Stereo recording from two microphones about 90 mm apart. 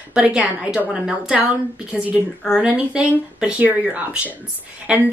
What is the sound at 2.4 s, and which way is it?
Speech, 10° right (ahead or behind).